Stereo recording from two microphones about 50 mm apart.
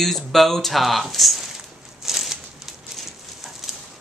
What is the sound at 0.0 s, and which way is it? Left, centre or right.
Speech, centre.